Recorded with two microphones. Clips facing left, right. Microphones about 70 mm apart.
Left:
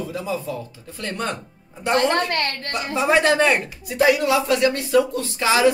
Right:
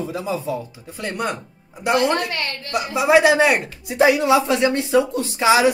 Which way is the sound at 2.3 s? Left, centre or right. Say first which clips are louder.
Left 3 dB; left.